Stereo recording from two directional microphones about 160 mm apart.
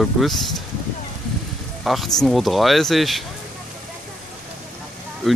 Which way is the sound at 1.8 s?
Centre (ahead or behind).